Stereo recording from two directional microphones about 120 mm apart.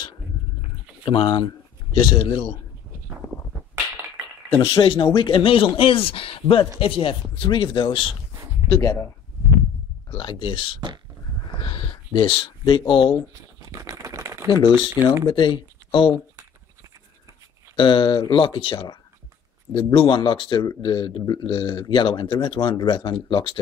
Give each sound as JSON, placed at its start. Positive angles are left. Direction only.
{"t": 1.0, "sound": "speech", "side_deg": 40}
{"t": 4.6, "sound": "speech", "side_deg": 45}
{"t": 8.6, "sound": "speech", "side_deg": 35}
{"t": 10.1, "sound": "speech", "side_deg": 45}
{"t": 11.5, "sound": "a sound", "side_deg": 40}
{"t": 12.3, "sound": "speech", "side_deg": 45}
{"t": 13.7, "sound": "typewriter", "side_deg": -25}
{"t": 14.5, "sound": "speech", "side_deg": 40}
{"t": 17.7, "sound": "speech", "side_deg": 40}